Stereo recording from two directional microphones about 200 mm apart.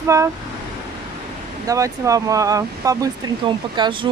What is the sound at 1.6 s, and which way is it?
Speech, 15° right (ahead or behind).